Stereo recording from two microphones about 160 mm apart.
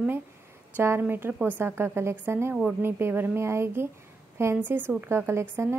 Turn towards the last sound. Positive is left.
turn(degrees=-15)  # may be behind; listen again after turning